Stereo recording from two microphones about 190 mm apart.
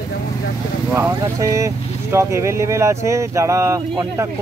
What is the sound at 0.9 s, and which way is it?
Speech, 15° right (ahead or behind).